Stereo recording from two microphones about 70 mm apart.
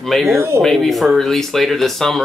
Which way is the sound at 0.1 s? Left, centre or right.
Centre.